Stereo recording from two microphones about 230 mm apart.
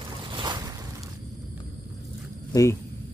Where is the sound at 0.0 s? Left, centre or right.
Right.